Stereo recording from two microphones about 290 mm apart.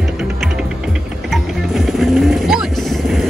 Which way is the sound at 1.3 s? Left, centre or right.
Centre.